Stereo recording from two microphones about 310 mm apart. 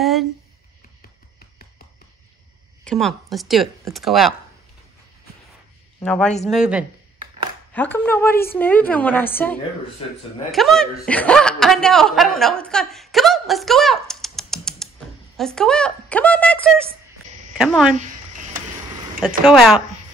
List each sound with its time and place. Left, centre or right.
0.0 s a sound: centre
2.8 s speech: centre
5.9 s speech: centre
10.0 s speech: centre
10.5 s a woman's voice: centre
19.4 s speech: centre